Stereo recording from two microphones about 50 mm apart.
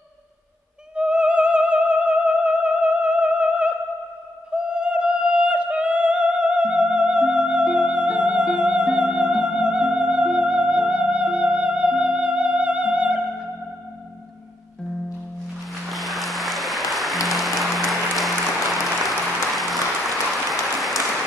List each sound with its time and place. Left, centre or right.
0.9 s music: right
15.9 s music: centre
18.8 s applause: centre